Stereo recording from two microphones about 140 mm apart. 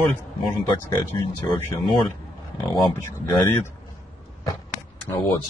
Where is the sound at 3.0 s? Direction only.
20° left (ahead or behind).